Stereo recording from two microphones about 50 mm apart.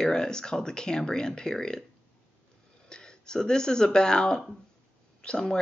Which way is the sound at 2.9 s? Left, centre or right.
Centre.